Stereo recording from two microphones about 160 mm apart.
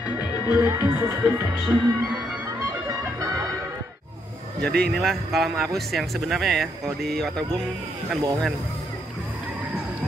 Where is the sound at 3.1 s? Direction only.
20° right (ahead or behind).